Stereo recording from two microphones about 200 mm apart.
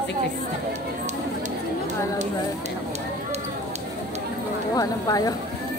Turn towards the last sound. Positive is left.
turn(degrees=15)  # may be behind; listen again after turning